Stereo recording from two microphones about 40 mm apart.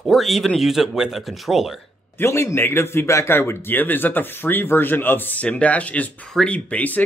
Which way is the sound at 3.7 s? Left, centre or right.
Left.